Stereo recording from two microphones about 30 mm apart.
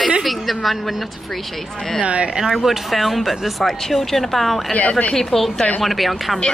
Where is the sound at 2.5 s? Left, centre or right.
Centre.